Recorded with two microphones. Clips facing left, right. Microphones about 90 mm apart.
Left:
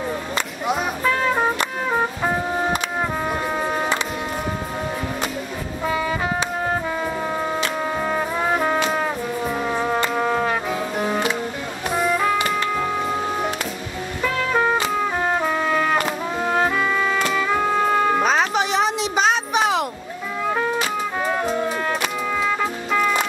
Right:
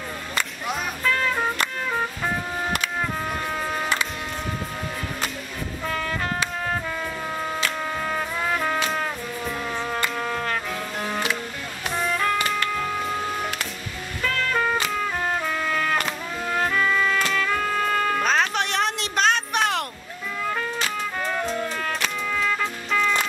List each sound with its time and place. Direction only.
0.7 s music: 15° left (ahead or behind)
5.9 s music: 10° left (ahead or behind)
8.0 s music: 15° left (ahead or behind)
18.2 s music: 5° left (ahead or behind)
20.4 s music: 15° left (ahead or behind)